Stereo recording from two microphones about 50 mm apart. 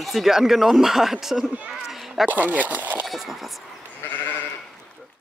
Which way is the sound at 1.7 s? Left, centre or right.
Centre.